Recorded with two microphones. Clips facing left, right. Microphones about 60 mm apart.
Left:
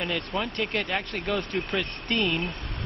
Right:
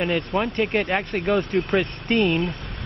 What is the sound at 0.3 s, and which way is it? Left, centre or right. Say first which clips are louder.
Speech: right 6 dB; right.